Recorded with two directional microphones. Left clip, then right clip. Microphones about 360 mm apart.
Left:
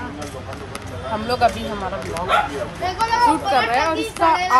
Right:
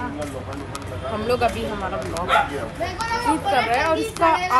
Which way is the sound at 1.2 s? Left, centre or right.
Centre.